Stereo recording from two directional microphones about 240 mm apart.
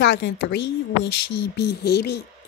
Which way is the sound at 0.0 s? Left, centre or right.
Left.